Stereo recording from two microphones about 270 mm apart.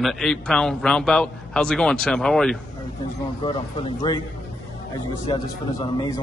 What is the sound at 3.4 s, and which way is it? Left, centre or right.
Speech, centre.